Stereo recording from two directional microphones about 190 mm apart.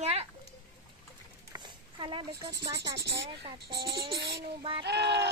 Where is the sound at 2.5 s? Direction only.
65° right (ahead or behind).